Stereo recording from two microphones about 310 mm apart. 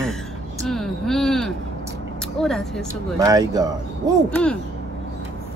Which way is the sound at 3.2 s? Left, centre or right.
Centre.